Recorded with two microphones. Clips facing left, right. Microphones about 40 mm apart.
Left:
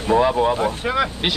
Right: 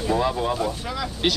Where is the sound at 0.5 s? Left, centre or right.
Left.